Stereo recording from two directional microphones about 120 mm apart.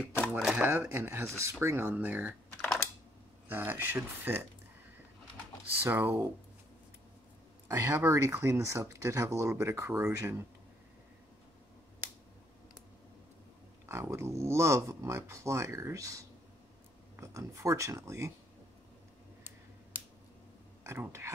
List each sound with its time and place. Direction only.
0.3 s speech: 10° right (ahead or behind)
2.6 s computer keyboard: 10° left (ahead or behind)
3.4 s speech: 15° right (ahead or behind)
5.9 s speech: 20° right (ahead or behind)
7.6 s speech: 25° right (ahead or behind)
13.8 s speech: 20° right (ahead or behind)
20.8 s speech: 20° right (ahead or behind)